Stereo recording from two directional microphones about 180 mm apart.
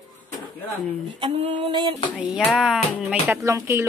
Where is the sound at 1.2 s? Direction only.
35° right (ahead or behind).